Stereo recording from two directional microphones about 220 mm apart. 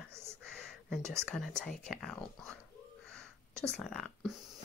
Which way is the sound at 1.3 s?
5° left (ahead or behind).